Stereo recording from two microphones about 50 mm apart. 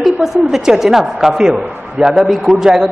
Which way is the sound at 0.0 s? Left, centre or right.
Centre.